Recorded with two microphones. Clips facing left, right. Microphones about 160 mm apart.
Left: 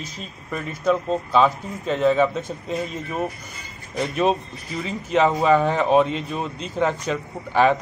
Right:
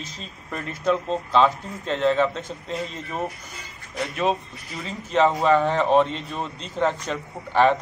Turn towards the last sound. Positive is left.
turn(degrees=5)  # may be behind; listen again after turning